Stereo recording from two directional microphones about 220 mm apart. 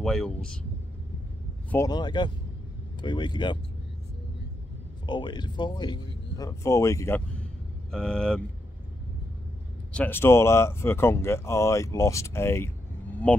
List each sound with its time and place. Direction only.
0.0 s speech: centre (ahead or behind)
1.7 s speech: 15° left (ahead or behind)
5.0 s speech: 20° left (ahead or behind); by 8.4 s 5° left (ahead or behind)
9.9 s speech: 10° left (ahead or behind)